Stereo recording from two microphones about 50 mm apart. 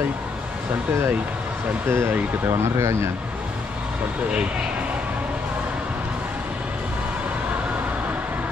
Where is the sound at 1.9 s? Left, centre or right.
Right.